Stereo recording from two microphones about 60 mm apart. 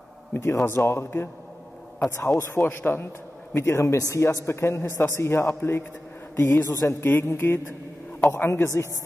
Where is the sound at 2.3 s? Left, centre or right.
Left.